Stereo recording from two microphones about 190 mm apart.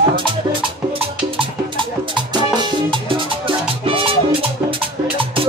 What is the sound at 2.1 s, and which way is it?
Music, 25° right (ahead or behind).